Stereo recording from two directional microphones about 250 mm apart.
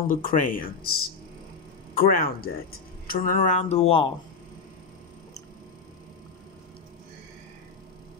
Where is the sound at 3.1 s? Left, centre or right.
Left.